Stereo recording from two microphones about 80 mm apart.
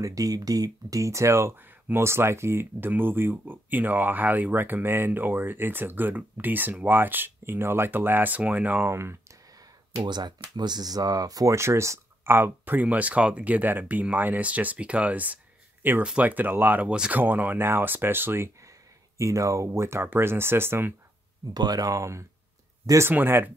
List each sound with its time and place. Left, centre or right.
0.0 s speech: right
8.8 s speech: right
10.0 s speech: right
11.5 s speech: right
16.9 s speech: centre
17.2 s speech: right
19.1 s speech: right
21.5 s speech: right
23.0 s speech: right